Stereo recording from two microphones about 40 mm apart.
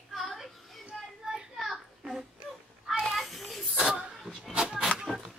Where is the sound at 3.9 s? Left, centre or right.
Right.